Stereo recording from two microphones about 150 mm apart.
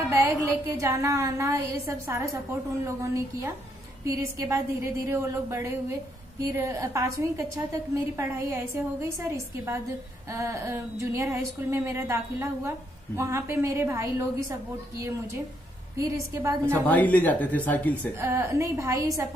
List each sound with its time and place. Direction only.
0.1 s speech: 20° right (ahead or behind)
16.0 s a woman's voice: 15° right (ahead or behind)
16.8 s speech: 10° left (ahead or behind)
18.2 s speech: 15° right (ahead or behind)